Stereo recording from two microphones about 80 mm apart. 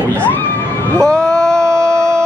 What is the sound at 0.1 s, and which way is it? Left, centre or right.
Speech, left.